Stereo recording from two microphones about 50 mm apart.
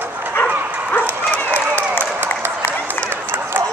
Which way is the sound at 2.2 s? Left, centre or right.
Right.